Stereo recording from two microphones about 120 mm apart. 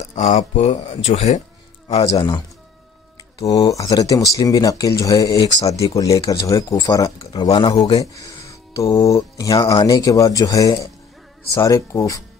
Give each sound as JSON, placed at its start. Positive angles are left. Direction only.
{"t": 0.0, "sound": "speech", "side_deg": 85}
{"t": 3.4, "sound": "speech", "side_deg": 30}
{"t": 8.0, "sound": "speech", "side_deg": 30}